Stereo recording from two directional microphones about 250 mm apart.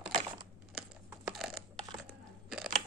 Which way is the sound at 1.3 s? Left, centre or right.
Centre.